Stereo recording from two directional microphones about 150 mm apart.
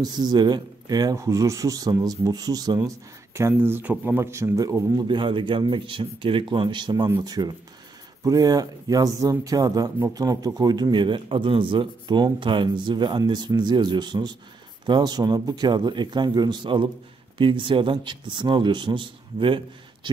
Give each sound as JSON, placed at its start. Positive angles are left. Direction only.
{"t": 0.0, "sound": "a man's voice", "side_deg": -30}